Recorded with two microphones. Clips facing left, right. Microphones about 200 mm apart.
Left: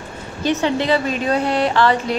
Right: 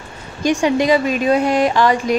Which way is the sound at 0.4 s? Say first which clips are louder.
Right 3 dB; 15° right (ahead or behind).